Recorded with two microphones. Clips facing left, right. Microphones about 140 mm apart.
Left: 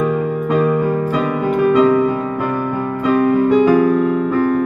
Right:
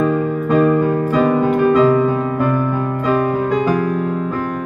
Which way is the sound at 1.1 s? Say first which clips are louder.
Right 3 dB; 40° right (ahead or behind).